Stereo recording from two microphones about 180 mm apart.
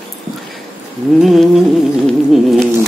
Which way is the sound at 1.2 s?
Centre (ahead or behind).